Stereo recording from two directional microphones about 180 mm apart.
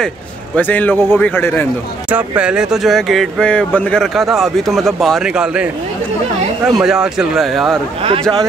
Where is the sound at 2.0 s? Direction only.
10° right (ahead or behind).